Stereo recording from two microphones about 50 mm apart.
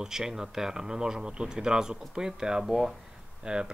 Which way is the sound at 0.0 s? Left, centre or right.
Centre.